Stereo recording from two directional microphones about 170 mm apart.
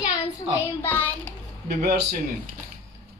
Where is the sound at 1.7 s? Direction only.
60° right (ahead or behind).